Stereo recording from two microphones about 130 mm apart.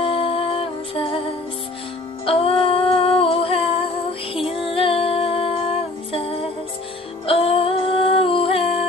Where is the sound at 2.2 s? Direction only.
45° left (ahead or behind).